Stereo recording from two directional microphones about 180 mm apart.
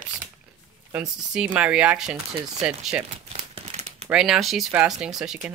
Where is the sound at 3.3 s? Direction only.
35° right (ahead or behind).